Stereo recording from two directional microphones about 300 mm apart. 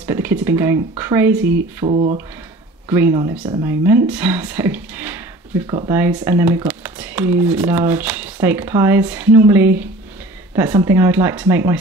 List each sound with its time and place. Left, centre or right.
0.0 s speech: centre
1.9 s speech: right
2.9 s speech: centre